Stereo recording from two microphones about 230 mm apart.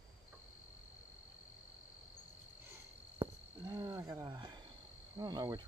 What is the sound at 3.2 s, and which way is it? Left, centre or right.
Cricket, right.